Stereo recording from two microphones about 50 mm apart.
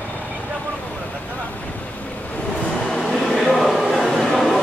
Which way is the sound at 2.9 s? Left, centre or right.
Centre.